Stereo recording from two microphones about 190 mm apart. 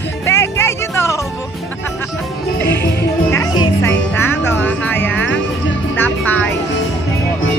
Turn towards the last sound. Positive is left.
turn(degrees=10)  # may be behind; listen again after turning